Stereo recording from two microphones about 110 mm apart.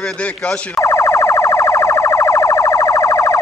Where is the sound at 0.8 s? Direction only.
25° left (ahead or behind).